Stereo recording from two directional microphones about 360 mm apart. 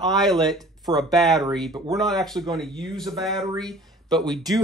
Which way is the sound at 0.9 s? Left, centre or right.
Centre.